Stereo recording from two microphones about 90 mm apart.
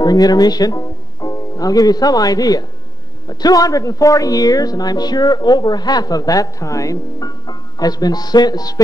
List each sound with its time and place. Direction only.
0.0 s a woman's voice: 50° left (ahead or behind)